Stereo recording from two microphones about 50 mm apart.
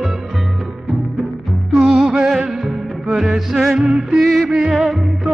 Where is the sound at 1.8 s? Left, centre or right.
Centre.